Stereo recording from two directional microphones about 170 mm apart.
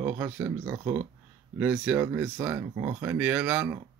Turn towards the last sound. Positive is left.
turn(degrees=-15)  # may be behind; listen again after turning